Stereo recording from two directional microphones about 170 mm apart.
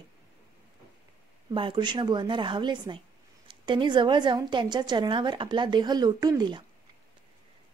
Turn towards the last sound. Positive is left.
turn(degrees=-25)  # may be behind; listen again after turning